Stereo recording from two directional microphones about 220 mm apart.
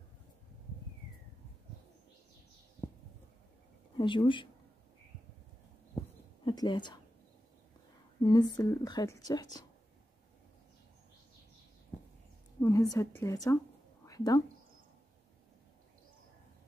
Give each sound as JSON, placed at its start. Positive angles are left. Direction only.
{"t": 4.0, "sound": "speech", "side_deg": 20}
{"t": 6.4, "sound": "a woman's voice", "side_deg": 20}
{"t": 8.2, "sound": "speech", "side_deg": 20}
{"t": 12.5, "sound": "a sound", "side_deg": 15}
{"t": 12.9, "sound": "speech", "side_deg": 15}
{"t": 14.0, "sound": "a sound", "side_deg": 15}